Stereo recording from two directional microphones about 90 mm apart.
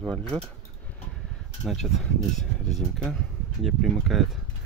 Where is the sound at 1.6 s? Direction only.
Centre (ahead or behind).